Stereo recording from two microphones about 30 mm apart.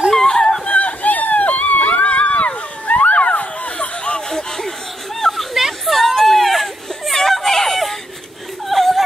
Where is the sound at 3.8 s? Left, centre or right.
Left.